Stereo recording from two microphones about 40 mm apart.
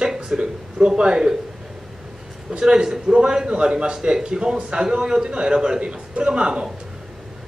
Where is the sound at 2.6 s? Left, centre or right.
Centre.